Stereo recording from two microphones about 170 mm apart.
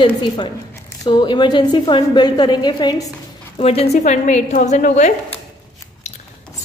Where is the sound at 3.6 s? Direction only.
35° left (ahead or behind).